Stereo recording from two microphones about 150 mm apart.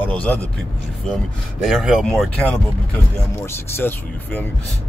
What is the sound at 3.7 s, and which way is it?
Speech, 15° left (ahead or behind).